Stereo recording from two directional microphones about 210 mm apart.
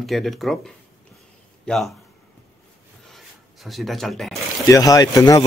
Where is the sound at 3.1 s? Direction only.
Centre (ahead or behind).